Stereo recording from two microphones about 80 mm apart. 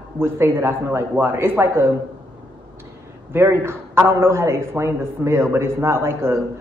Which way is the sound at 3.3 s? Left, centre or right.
Right.